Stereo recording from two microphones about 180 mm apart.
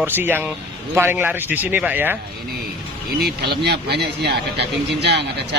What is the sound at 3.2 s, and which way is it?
Speech, 65° right (ahead or behind).